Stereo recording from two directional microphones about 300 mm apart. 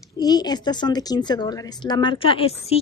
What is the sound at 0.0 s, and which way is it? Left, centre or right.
Speech, centre.